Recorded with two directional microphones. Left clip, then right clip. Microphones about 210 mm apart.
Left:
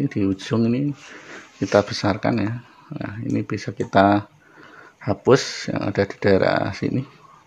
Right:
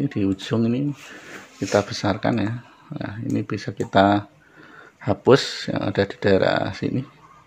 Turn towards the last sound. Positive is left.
turn(degrees=5)  # may be behind; listen again after turning